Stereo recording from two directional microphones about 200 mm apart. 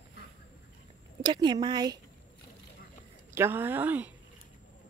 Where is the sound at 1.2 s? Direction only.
20° right (ahead or behind).